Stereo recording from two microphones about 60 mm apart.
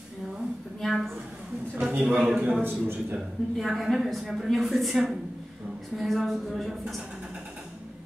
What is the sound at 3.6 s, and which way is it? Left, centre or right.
A woman's voice, centre.